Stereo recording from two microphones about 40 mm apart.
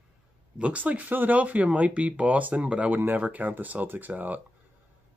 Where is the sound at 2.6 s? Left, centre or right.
Right.